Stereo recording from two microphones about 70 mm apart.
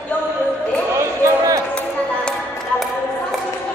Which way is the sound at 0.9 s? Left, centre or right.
Right.